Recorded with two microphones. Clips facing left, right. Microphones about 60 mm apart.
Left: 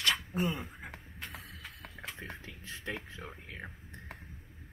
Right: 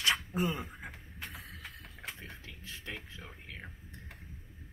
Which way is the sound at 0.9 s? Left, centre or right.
Left.